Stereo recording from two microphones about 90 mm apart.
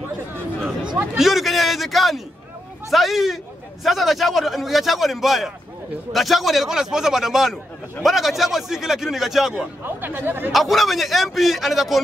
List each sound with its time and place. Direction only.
1.1 s a man's voice: 5° right (ahead or behind)
9.8 s speech: 20° right (ahead or behind)
10.5 s a man's voice: centre (ahead or behind)